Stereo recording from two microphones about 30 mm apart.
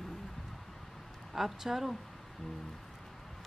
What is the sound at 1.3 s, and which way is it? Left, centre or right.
Speech, centre.